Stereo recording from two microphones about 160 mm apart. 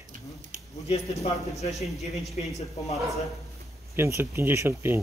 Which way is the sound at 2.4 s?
50° left (ahead or behind).